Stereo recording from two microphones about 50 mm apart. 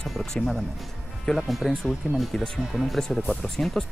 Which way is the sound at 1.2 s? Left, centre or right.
Centre.